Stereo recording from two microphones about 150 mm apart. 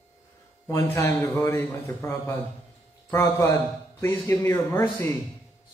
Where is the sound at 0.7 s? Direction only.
15° left (ahead or behind).